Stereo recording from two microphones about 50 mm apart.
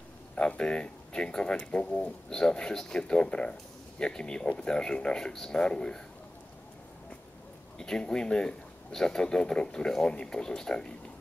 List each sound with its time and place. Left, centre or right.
0.4 s a man's voice: centre
7.8 s a man's voice: centre